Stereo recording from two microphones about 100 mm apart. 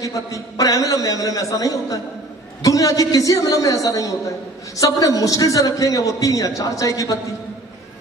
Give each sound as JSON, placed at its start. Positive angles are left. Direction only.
{"t": 0.0, "sound": "a man's voice", "side_deg": 35}